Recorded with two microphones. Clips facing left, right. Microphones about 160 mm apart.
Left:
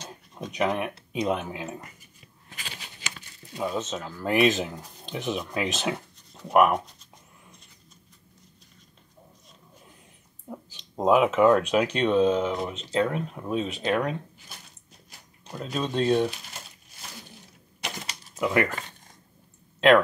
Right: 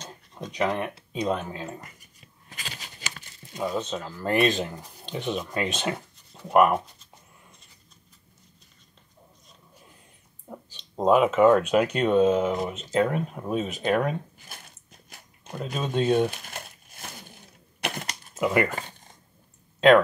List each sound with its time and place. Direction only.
0.3 s speech: centre (ahead or behind)
2.5 s a sound: 40° right (ahead or behind)
3.5 s speech: 5° left (ahead or behind)
11.0 s speech: centre (ahead or behind)
14.5 s a sound: 50° right (ahead or behind)
15.5 s speech: 5° right (ahead or behind)
16.3 s crumpling: 55° right (ahead or behind)
17.7 s a sound: 60° right (ahead or behind)
18.3 s speech: 5° right (ahead or behind)